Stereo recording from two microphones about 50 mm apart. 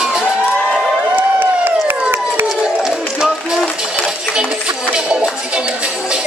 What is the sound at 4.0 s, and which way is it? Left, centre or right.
Music, centre.